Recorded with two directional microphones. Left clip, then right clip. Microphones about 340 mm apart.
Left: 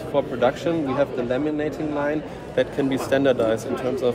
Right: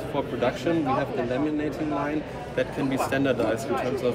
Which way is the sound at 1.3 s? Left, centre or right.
Centre.